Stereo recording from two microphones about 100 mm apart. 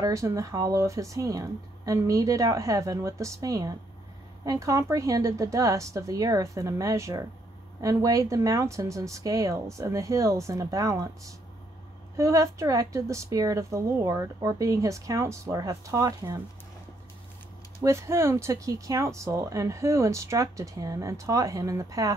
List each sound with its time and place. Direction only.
0.0 s speech: 35° right (ahead or behind)
17.7 s speech: 30° right (ahead or behind)